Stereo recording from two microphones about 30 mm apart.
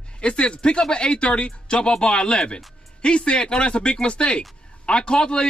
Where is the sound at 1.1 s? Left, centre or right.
Left.